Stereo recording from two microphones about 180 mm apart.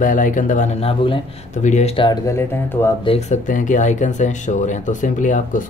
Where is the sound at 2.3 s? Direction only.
15° left (ahead or behind).